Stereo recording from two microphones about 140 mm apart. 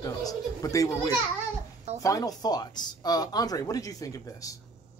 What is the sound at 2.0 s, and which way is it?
Speech, 25° left (ahead or behind).